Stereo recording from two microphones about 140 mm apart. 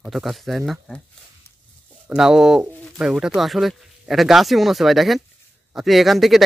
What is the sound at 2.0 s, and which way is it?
Speech, 5° right (ahead or behind).